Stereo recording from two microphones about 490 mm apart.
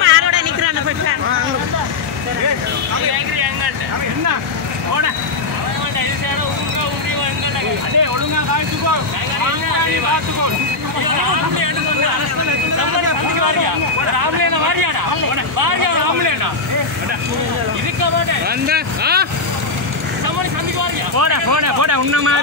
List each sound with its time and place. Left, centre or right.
0.0 s a sound: right
11.1 s speech: right
13.3 s vehicle: right
14.1 s speech: right
15.6 s a sound: right
18.7 s speech: centre
21.2 s speech: right